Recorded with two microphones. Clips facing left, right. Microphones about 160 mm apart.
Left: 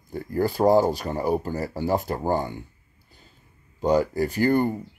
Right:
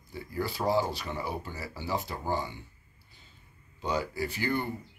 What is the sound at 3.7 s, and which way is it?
Speech, 45° left (ahead or behind).